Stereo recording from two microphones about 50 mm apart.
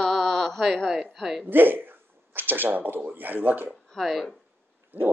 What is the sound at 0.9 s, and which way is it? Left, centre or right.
Speech, centre.